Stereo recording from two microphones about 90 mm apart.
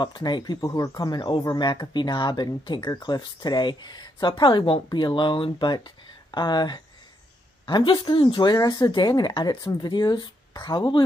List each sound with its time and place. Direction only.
0.0 s speech: 55° left (ahead or behind)
0.6 s speech: 40° left (ahead or behind); by 11.1 s 60° left (ahead or behind)